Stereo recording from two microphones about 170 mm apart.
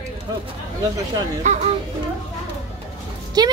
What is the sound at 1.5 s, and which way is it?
Speech, 45° right (ahead or behind).